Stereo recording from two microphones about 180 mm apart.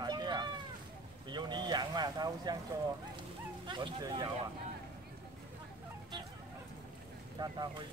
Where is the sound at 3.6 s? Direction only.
25° right (ahead or behind).